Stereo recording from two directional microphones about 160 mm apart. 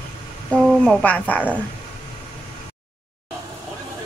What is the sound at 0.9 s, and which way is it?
Speech, 5° left (ahead or behind).